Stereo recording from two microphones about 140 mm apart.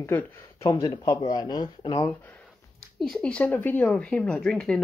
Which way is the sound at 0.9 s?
35° left (ahead or behind).